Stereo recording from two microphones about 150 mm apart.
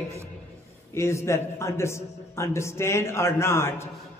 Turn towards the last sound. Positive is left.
turn(degrees=15)  # may be behind; listen again after turning